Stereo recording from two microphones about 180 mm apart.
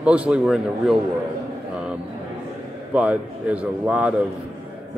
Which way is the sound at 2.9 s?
5° right (ahead or behind).